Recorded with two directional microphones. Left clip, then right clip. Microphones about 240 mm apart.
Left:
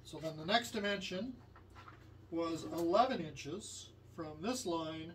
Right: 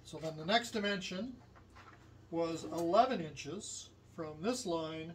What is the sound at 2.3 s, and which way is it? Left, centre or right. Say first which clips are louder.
Speech: right 2 dB; centre.